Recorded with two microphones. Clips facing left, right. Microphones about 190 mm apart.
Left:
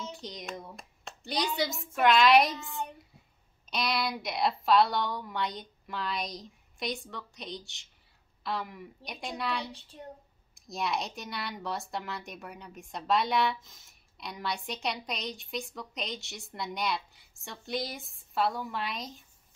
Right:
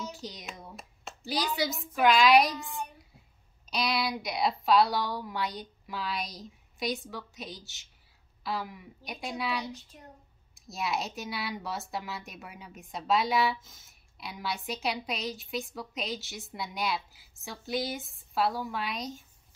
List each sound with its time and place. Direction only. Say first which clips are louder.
0.1 s speech: left 2 dB; centre (ahead or behind)
3.7 s speech: right 1 dB; centre (ahead or behind)
9.7 s child singing: right 5 dB; 30° left (ahead or behind)
10.5 s speech: even; centre (ahead or behind)